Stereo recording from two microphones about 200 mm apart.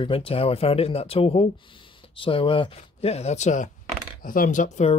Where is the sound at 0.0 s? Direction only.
30° left (ahead or behind).